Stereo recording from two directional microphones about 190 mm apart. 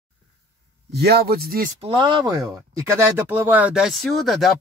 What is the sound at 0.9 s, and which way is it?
Speech, 60° right (ahead or behind).